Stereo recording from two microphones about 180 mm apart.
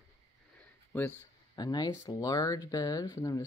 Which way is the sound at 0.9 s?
10° left (ahead or behind).